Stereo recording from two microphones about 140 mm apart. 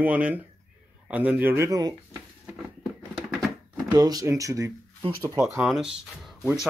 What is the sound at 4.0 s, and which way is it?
Speech, 25° right (ahead or behind).